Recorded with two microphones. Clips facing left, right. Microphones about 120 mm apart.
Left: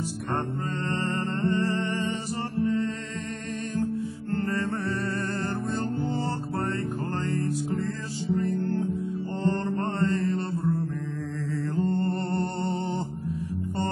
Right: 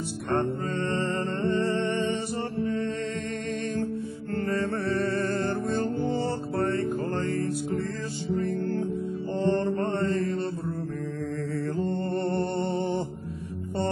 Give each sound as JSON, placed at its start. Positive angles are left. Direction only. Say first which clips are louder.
{"t": 8.3, "sound": "music", "louder": "left 1 dB", "side_deg": 0}
{"t": 9.4, "sound": "music", "louder": "right 3 dB", "side_deg": -25}